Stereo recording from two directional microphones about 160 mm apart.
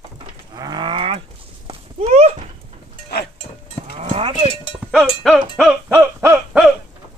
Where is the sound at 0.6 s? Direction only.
25° right (ahead or behind).